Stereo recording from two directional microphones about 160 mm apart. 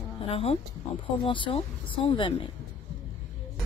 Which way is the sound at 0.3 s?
40° left (ahead or behind).